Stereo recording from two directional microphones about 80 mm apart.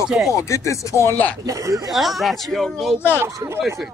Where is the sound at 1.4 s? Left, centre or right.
Right.